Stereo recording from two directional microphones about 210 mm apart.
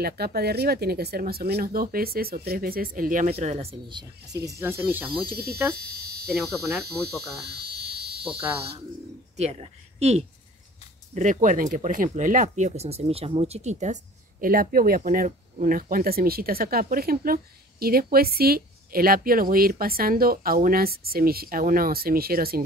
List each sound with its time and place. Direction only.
0.0 s speech: 50° right (ahead or behind); by 5.3 s 10° right (ahead or behind)
5.3 s speech: 50° right (ahead or behind)
5.8 s a sound: 50° right (ahead or behind)
7.4 s fire alarm: 50° right (ahead or behind)
8.2 s speech: 10° right (ahead or behind)
9.4 s speech: 30° right (ahead or behind); by 22.6 s 45° right (ahead or behind)